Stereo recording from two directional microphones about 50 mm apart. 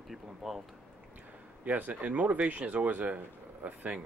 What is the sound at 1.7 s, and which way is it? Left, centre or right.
Speech, right.